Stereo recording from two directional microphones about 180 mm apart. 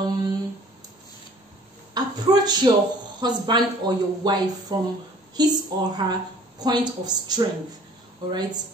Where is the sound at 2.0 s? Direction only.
25° right (ahead or behind).